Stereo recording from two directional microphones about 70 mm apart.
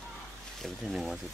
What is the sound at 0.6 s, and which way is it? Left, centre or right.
Speech, centre.